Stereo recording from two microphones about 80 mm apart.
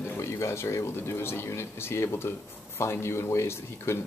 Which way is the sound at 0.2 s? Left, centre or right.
Left.